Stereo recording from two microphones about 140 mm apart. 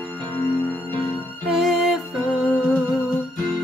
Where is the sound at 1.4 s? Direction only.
Centre (ahead or behind).